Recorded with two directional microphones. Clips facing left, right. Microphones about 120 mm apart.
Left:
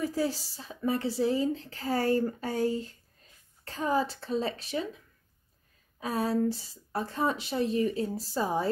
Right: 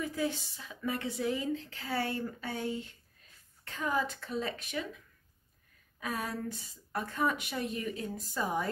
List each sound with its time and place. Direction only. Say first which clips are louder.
0.0 s speech: left 4 dB; 35° left (ahead or behind)
5.9 s speech: left 8 dB; 30° left (ahead or behind)